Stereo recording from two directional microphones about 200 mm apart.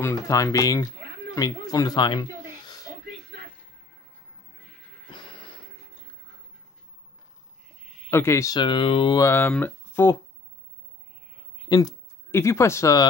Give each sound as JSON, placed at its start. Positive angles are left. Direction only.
{"t": 0.0, "sound": "speech", "side_deg": 15}
{"t": 5.1, "sound": "music", "side_deg": 25}
{"t": 8.1, "sound": "speech", "side_deg": 15}
{"t": 9.2, "sound": "speech", "side_deg": 10}
{"t": 11.7, "sound": "speech", "side_deg": 15}